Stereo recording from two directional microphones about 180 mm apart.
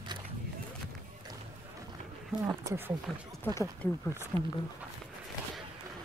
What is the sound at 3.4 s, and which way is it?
Speech, 10° left (ahead or behind).